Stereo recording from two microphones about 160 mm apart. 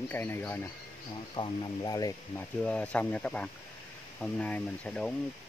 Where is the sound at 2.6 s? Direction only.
10° left (ahead or behind).